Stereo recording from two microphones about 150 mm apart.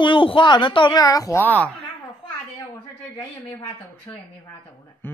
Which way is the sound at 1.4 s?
10° left (ahead or behind).